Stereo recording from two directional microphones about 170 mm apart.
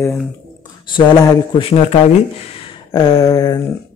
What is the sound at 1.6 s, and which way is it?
Speech, 35° left (ahead or behind).